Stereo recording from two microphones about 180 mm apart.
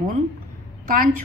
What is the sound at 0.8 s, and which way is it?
Speech, 55° right (ahead or behind).